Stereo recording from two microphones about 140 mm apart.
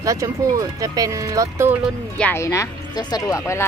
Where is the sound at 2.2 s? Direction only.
20° left (ahead or behind).